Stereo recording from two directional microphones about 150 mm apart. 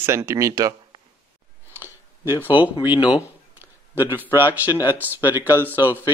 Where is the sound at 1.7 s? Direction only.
15° right (ahead or behind).